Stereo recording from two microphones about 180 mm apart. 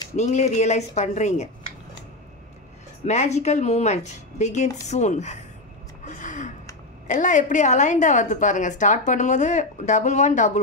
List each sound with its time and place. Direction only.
0.1 s speech: 40° left (ahead or behind)
3.1 s speech: 40° left (ahead or behind)
6.0 s gasp: 45° left (ahead or behind)
7.1 s a woman's voice: 45° left (ahead or behind)